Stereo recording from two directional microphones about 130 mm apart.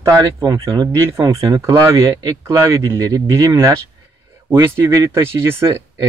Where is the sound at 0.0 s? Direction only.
25° right (ahead or behind).